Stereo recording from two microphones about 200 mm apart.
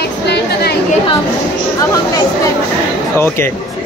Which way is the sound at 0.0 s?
55° left (ahead or behind).